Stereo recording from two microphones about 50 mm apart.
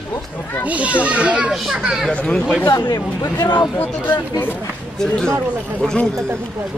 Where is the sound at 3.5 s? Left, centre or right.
Left.